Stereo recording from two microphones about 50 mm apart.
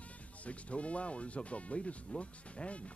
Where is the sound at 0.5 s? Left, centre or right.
Left.